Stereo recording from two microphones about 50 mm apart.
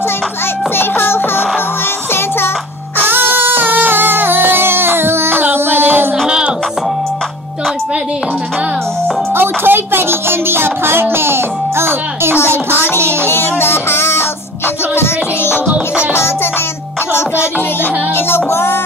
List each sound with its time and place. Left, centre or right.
0.7 s music: left
3.0 s music: right
6.2 s music: centre
9.3 s music: right
12.9 s child singing: right
13.3 s music: left
15.5 s music: right
18.1 s music: left